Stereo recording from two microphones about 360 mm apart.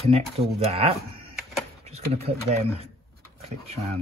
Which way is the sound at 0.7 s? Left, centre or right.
Centre.